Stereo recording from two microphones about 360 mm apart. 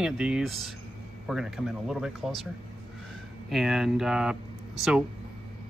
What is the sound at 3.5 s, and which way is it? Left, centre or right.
Speech, centre.